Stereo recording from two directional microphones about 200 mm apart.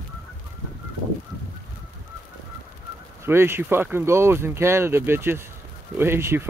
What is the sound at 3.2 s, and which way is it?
Speech, 10° right (ahead or behind).